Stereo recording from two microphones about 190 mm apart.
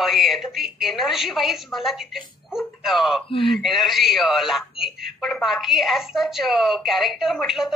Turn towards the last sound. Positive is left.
turn(degrees=0)  # may be behind; listen again after turning